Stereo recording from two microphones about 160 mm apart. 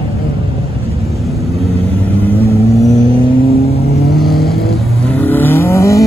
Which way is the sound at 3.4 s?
40° left (ahead or behind).